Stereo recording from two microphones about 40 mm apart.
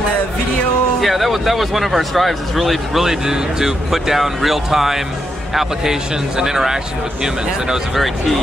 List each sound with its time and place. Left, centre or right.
1.0 s speech: centre